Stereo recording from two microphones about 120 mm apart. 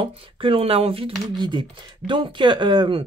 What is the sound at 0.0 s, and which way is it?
Speech, 50° right (ahead or behind).